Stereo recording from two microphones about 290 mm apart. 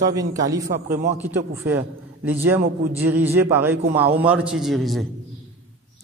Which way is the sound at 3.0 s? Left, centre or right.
Centre.